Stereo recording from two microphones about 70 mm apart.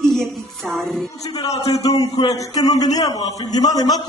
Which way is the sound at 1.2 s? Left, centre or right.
Left.